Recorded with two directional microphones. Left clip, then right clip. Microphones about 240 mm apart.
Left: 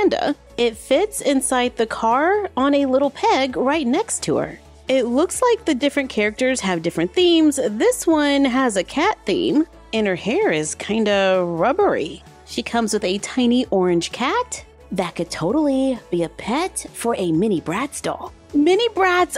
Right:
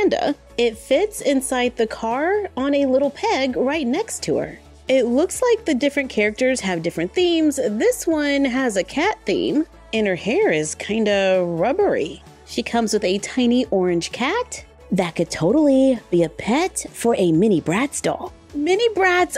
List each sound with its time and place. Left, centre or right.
0.0 s a woman's voice: centre